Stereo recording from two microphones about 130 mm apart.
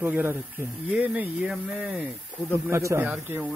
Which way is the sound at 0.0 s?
15° right (ahead or behind).